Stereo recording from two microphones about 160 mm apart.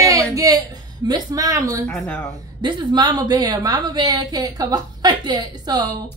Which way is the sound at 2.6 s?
25° right (ahead or behind).